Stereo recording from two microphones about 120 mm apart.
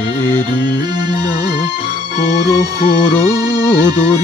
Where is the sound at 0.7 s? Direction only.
40° right (ahead or behind).